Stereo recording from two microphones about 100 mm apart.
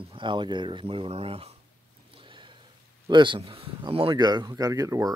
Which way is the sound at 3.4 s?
65° right (ahead or behind).